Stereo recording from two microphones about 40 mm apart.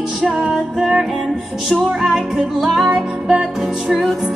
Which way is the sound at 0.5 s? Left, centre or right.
Centre.